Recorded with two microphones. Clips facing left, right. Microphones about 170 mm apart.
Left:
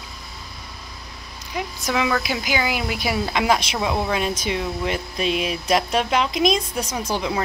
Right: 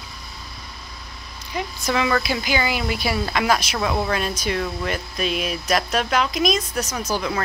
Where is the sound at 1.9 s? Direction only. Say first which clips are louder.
Right 1 dB; 5° left (ahead or behind); by 7.3 s 30° left (ahead or behind).